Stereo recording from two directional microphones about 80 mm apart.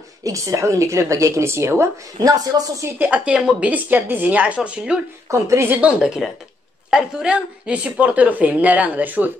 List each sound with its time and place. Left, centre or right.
0.2 s speech: right
2.1 s speech: right
3.0 s a woman's voice: centre
5.3 s speech: right
5.9 s a woman's voice: centre